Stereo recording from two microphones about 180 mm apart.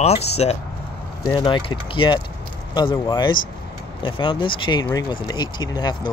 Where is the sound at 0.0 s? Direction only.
35° left (ahead or behind).